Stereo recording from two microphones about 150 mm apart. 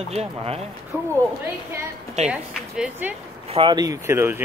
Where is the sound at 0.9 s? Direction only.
15° right (ahead or behind).